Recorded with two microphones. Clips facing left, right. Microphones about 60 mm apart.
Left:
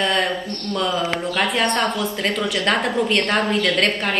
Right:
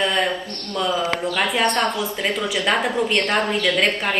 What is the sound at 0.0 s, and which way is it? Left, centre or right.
Speech, centre.